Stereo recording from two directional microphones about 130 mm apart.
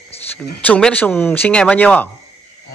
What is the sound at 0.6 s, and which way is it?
Speech, 10° left (ahead or behind).